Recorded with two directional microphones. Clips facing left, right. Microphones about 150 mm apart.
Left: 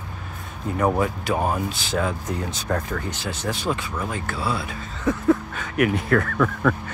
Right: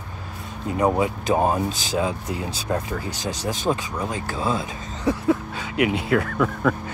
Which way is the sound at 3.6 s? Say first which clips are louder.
Right 4 dB; 15° right (ahead or behind).